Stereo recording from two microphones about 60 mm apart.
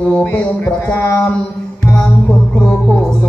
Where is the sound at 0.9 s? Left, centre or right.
Left.